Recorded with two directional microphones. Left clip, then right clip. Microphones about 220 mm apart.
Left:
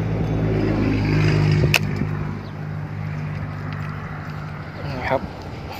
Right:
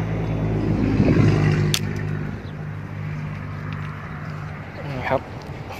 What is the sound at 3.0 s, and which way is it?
Vehicle, 45° left (ahead or behind).